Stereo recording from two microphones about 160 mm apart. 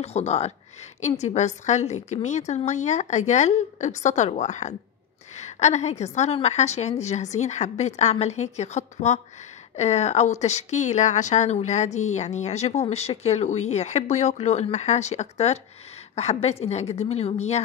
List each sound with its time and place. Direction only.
0.0 s a woman's voice: 40° left (ahead or behind)